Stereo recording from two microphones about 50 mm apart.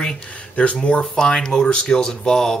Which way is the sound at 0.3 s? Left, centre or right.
Left.